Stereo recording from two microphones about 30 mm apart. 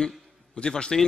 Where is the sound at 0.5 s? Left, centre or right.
Left.